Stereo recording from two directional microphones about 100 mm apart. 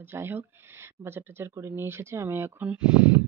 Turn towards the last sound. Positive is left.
turn(degrees=-10)  # may be behind; listen again after turning